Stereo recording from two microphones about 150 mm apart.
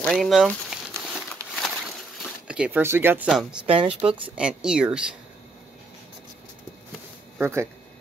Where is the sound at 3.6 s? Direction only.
35° right (ahead or behind).